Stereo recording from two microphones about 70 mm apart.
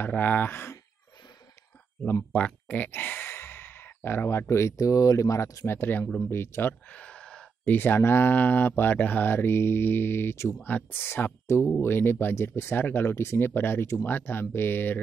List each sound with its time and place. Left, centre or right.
0.0 s speech: left
2.3 s speech: left
5.7 s speech: left
6.0 s speech: centre
6.3 s speech: left
6.9 s a sound: centre
7.6 s speech: left